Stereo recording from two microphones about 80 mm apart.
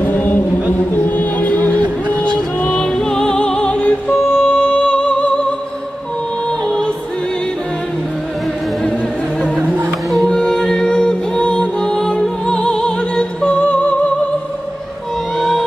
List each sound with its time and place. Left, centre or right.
0.0 s music: left
10.1 s music: centre
15.3 s music: centre